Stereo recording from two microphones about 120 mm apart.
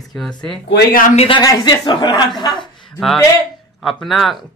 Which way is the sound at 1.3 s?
35° left (ahead or behind).